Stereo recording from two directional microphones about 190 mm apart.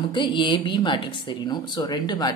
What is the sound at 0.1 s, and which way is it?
Speech, 25° left (ahead or behind).